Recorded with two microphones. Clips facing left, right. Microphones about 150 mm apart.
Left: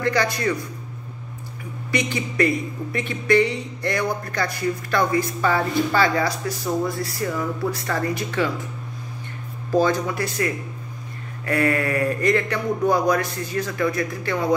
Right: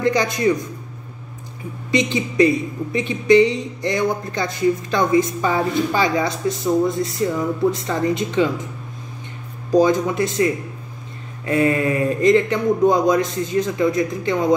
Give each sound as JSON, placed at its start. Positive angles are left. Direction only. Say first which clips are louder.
{"t": 0.0, "sound": "a man's voice", "louder": "right 4 dB", "side_deg": -20}
{"t": 1.9, "sound": "a man's voice", "louder": "right 5 dB", "side_deg": -20}
{"t": 9.7, "sound": "a man's voice", "louder": "right 4 dB", "side_deg": -20}